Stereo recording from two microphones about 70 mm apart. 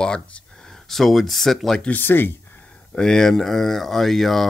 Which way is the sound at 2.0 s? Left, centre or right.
Left.